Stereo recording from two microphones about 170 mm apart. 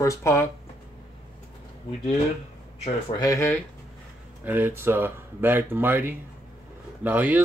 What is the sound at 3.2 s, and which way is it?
Speech, 15° left (ahead or behind).